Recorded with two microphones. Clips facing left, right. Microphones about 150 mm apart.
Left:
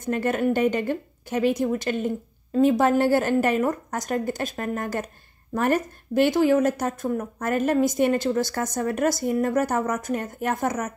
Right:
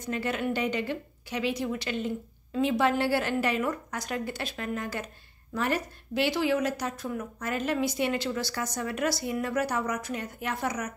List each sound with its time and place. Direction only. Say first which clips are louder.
0.0 s a woman's voice: left 7 dB; 50° left (ahead or behind)